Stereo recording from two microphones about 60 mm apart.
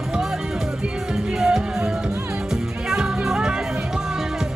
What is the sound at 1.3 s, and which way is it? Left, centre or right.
Music, centre.